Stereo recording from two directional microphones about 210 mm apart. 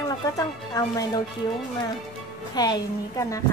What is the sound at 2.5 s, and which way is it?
Speech, 20° left (ahead or behind).